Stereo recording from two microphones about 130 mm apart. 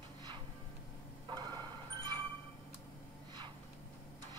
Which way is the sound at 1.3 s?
35° right (ahead or behind).